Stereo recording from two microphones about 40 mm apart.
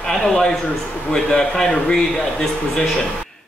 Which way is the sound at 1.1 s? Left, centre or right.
Centre.